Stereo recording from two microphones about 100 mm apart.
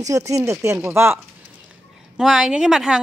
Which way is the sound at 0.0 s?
35° right (ahead or behind).